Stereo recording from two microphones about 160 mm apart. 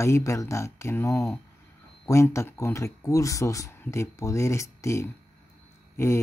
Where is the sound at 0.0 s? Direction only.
20° left (ahead or behind).